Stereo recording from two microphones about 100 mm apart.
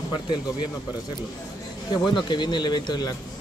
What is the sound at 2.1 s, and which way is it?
Speech, 50° left (ahead or behind).